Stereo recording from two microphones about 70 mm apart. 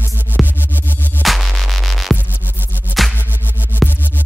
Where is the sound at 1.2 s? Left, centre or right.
Centre.